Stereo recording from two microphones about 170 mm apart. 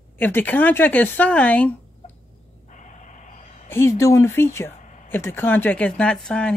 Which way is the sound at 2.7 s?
45° left (ahead or behind).